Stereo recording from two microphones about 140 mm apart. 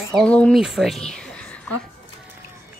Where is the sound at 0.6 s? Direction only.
Centre (ahead or behind).